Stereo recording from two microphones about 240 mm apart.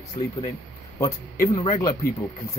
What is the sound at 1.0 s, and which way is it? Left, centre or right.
Speech, centre.